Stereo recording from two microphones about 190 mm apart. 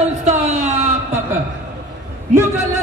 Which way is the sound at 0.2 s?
35° right (ahead or behind).